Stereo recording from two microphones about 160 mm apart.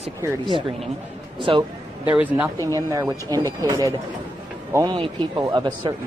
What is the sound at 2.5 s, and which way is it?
Speech, 20° left (ahead or behind).